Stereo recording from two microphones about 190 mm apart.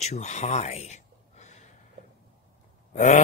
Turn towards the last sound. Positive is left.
turn(degrees=40)  # may be behind; listen again after turning